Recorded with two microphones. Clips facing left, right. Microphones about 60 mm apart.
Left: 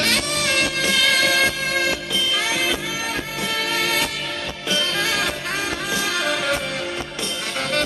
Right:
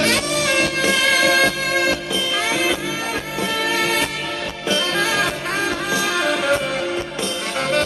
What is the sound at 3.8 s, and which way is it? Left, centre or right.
Music, centre.